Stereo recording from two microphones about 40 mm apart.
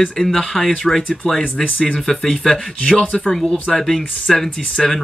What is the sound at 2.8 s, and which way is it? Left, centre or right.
Speech, left.